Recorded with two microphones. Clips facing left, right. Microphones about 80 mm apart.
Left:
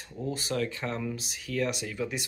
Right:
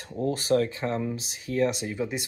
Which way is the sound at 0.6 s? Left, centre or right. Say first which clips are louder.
Right 4 dB; right.